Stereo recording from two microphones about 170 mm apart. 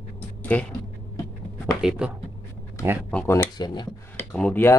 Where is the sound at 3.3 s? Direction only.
20° left (ahead or behind).